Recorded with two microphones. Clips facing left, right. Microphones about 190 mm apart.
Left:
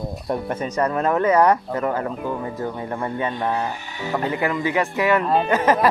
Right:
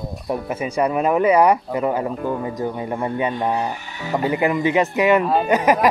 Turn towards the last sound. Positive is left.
turn(degrees=-15)  # may be behind; listen again after turning